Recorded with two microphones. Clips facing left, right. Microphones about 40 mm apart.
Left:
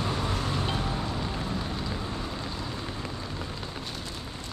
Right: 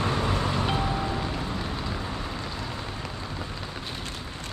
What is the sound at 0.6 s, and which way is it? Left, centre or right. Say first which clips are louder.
Music: right 4 dB; right.